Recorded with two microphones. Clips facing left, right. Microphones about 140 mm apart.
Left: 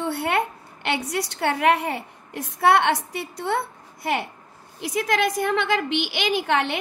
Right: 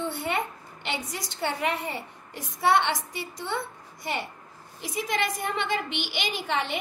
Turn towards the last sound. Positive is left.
turn(degrees=70)  # may be behind; listen again after turning